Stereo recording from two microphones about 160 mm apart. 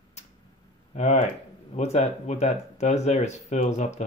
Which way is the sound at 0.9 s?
45° left (ahead or behind).